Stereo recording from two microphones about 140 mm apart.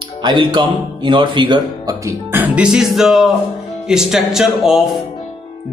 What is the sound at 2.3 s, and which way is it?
Music, 10° right (ahead or behind).